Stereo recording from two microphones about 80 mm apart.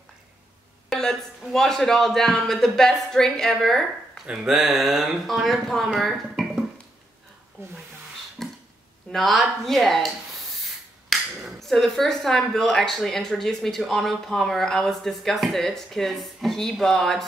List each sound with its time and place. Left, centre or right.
0.8 s speech: centre
7.6 s speech: right
8.4 s a sound: centre
9.1 s speech: centre